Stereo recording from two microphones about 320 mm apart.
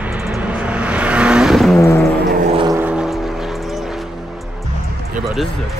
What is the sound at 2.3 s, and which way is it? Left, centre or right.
Gong, right.